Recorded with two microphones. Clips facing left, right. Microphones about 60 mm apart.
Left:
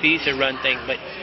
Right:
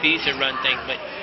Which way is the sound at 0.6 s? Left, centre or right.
Centre.